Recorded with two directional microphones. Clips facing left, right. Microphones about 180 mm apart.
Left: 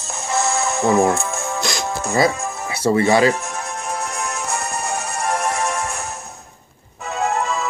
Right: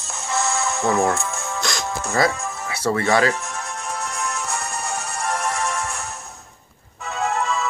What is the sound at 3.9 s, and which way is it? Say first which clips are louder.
Music: even; 50° left (ahead or behind).